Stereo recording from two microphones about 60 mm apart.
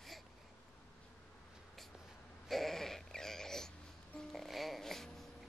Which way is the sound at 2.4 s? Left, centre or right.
Centre.